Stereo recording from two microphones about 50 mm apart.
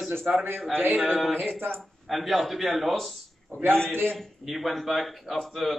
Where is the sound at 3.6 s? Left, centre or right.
Right.